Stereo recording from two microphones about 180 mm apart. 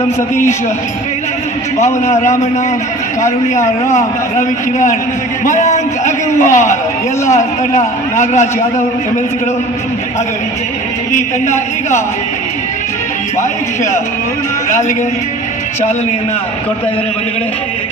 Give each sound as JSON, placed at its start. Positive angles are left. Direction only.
{"t": 2.0, "sound": "a man's voice", "side_deg": 40}
{"t": 11.4, "sound": "a man's voice", "side_deg": 40}